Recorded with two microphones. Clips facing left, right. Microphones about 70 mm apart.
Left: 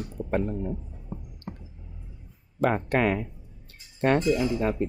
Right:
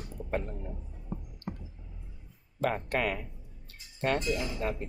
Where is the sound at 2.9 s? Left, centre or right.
Left.